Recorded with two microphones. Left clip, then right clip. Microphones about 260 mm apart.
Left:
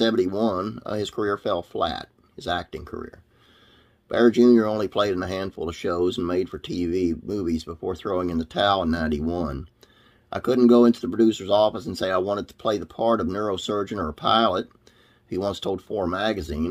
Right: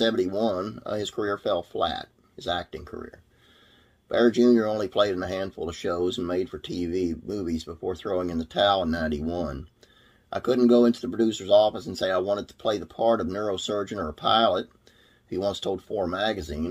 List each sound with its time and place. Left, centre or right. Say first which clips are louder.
0.0 s speech: left 2 dB; left